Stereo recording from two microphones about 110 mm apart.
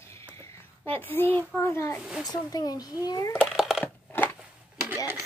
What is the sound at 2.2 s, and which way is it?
Speech, 35° left (ahead or behind).